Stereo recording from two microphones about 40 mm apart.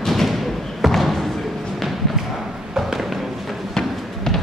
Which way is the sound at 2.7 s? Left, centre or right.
Centre.